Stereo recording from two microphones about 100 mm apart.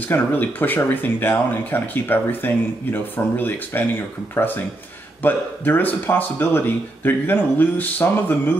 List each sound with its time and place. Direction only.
0.1 s speech: 20° left (ahead or behind)